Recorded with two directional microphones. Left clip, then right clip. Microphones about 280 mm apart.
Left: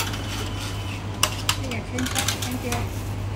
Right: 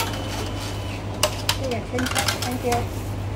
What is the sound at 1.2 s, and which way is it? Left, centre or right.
Dishes, centre.